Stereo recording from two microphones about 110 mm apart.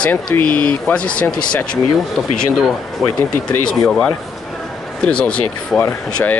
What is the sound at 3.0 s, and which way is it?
Speech, 5° right (ahead or behind).